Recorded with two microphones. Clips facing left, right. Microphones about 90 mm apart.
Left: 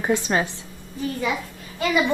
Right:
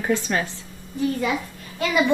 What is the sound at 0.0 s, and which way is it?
Speech, 20° left (ahead or behind).